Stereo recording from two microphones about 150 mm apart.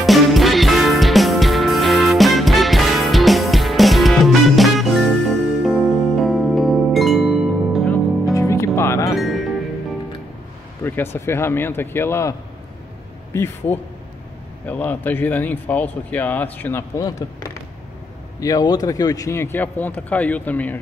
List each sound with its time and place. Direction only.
0.0 s music: centre (ahead or behind)
8.4 s music: 20° left (ahead or behind)
9.1 s music: centre (ahead or behind)
10.8 s vehicle: 15° left (ahead or behind)
11.1 s speech: 15° left (ahead or behind)